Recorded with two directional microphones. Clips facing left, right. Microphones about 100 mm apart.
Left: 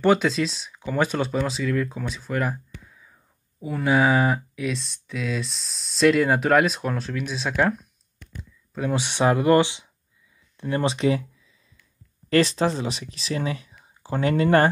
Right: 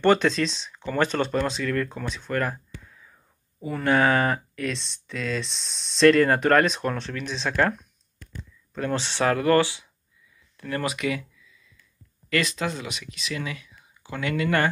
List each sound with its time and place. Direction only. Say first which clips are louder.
0.0 s speech: even; 5° left (ahead or behind); by 11.2 s 30° left (ahead or behind)
12.3 s speech: left 6 dB; 35° left (ahead or behind)